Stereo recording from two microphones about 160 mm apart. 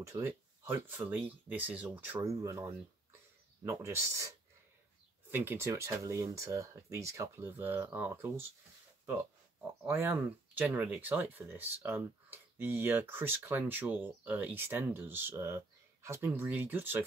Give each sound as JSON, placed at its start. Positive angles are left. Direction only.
{"t": 0.1, "sound": "speech", "side_deg": -20}
{"t": 9.6, "sound": "speech", "side_deg": -15}